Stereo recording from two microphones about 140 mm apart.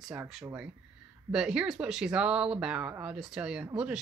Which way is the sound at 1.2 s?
5° right (ahead or behind).